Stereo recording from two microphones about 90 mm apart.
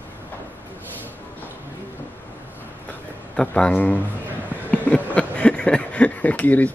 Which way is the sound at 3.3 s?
10° left (ahead or behind).